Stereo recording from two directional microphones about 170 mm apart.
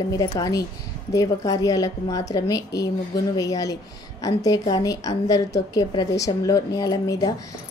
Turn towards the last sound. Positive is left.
turn(degrees=20)  # may be behind; listen again after turning